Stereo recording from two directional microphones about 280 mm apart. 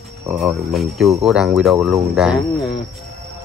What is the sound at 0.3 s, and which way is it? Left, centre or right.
Speech, centre.